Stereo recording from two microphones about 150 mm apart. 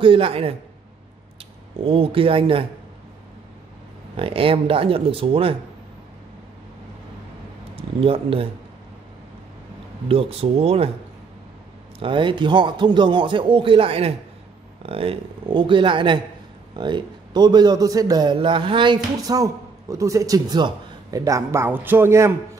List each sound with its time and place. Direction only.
0.0 s speech: 35° right (ahead or behind)
1.9 s speech: 35° right (ahead or behind)
4.2 s speech: 40° right (ahead or behind)
7.7 s speech: 40° right (ahead or behind)
10.0 s speech: 40° right (ahead or behind)
12.0 s a man's voice: 35° right (ahead or behind); by 22.3 s 15° right (ahead or behind)